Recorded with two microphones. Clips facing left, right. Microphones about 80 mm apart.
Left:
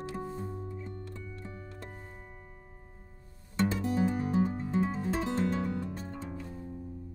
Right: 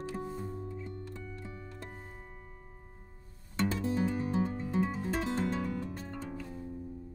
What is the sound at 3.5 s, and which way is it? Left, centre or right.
Music, left.